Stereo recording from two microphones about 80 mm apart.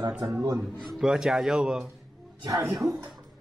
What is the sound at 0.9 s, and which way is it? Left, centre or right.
Speech, centre.